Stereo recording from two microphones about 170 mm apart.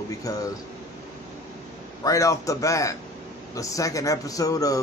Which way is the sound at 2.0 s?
20° left (ahead or behind).